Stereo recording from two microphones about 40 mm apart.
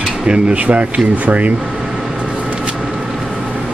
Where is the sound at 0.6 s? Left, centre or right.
Right.